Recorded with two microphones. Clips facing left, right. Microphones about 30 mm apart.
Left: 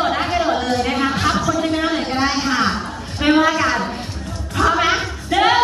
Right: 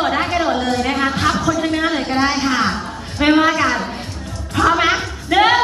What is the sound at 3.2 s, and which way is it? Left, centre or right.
Speech, centre.